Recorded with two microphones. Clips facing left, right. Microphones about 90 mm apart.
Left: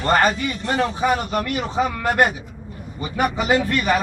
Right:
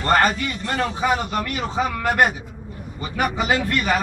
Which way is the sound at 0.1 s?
5° left (ahead or behind).